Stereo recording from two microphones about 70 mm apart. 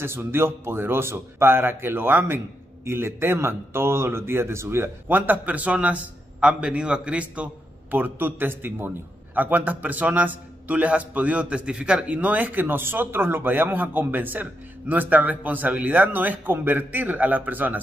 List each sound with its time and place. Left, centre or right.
0.0 s a man's voice: right